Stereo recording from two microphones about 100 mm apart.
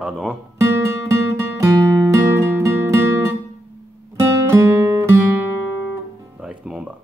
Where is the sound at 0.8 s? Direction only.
30° right (ahead or behind).